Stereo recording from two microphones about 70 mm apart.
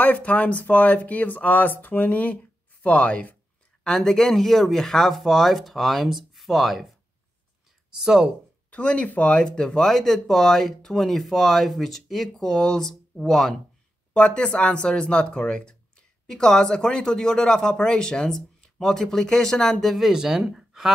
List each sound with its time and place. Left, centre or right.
0.0 s speech: left
3.8 s speech: centre
8.0 s speech: centre
8.6 s speech: centre
14.1 s speech: centre